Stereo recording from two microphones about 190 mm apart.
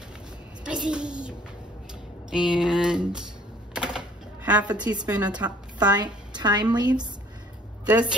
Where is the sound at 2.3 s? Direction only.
5° right (ahead or behind).